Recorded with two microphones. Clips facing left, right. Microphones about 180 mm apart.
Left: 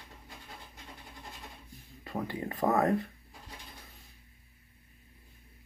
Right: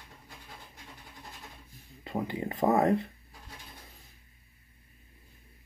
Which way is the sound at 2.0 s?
20° right (ahead or behind).